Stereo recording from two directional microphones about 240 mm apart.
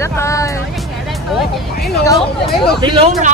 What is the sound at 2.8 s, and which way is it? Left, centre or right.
Speech, right.